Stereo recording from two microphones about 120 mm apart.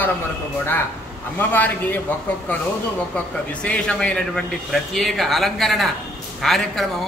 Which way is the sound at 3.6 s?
10° left (ahead or behind).